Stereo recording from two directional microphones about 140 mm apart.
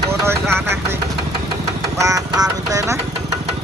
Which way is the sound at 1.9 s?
25° right (ahead or behind).